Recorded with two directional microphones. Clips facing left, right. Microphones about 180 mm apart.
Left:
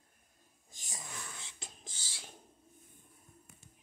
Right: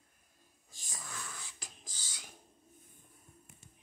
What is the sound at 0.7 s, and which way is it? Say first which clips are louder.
Wheeze: even; 20° left (ahead or behind).